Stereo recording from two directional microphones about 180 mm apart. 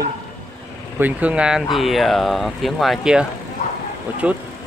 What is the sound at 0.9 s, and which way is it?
Speech, 10° right (ahead or behind).